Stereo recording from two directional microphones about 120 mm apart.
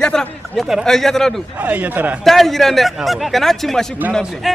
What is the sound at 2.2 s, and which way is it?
Speech, centre (ahead or behind).